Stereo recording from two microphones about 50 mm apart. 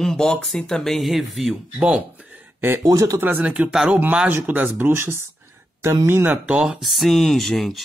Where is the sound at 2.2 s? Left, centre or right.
Right.